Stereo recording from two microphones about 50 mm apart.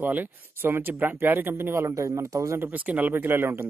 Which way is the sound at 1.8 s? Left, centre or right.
Right.